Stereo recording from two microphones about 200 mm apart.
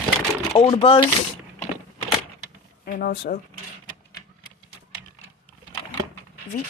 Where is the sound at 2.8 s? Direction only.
50° left (ahead or behind).